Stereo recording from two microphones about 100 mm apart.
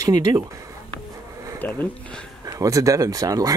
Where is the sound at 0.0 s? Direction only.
40° right (ahead or behind).